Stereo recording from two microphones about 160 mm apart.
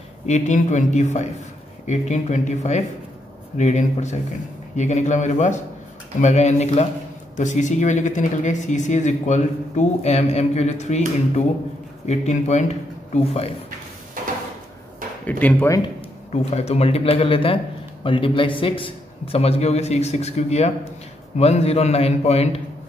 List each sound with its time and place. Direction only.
0.3 s a man's voice: 50° left (ahead or behind)
15.2 s speech: 10° left (ahead or behind)
16.3 s a man's voice: 45° left (ahead or behind)